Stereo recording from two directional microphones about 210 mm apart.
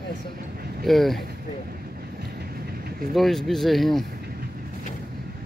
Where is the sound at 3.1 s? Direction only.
Centre (ahead or behind).